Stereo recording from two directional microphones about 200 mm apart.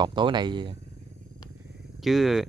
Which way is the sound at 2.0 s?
Centre (ahead or behind).